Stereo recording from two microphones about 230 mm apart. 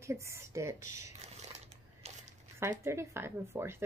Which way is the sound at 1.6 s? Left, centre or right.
Right.